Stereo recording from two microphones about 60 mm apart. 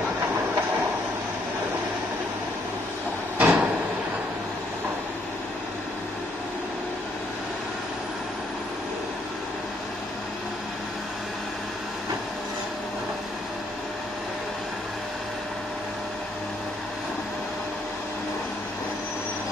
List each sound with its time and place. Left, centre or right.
3.3 s drawer open or close: right